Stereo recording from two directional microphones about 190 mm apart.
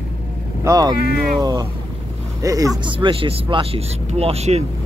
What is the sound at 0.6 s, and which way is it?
Speech, 20° right (ahead or behind).